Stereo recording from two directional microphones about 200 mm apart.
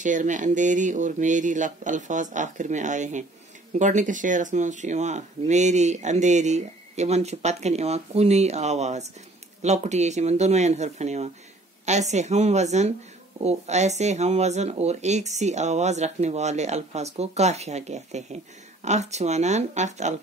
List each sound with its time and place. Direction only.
0.0 s speech: 40° right (ahead or behind)